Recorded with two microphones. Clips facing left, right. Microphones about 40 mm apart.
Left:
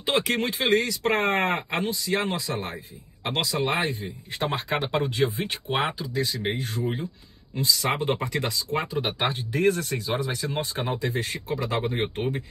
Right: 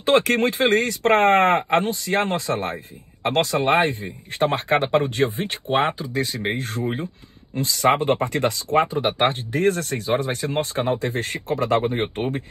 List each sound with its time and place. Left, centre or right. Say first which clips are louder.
0.0 s speech: right 7 dB; right
11.8 s speech: right 4 dB; right
12.2 s speech: right 3 dB; right